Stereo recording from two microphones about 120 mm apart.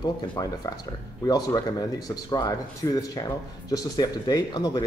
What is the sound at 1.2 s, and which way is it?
A man's voice, 35° left (ahead or behind).